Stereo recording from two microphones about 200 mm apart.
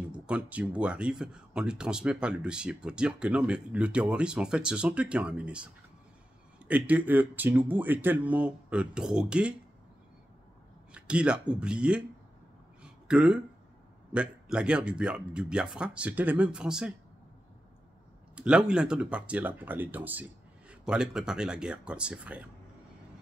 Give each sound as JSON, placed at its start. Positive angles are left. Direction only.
{"t": 0.1, "sound": "speech", "side_deg": -5}
{"t": 6.7, "sound": "speech", "side_deg": -10}
{"t": 10.9, "sound": "speech", "side_deg": -5}
{"t": 12.8, "sound": "a sound", "side_deg": -5}
{"t": 14.1, "sound": "speech", "side_deg": -5}
{"t": 18.3, "sound": "speech", "side_deg": -5}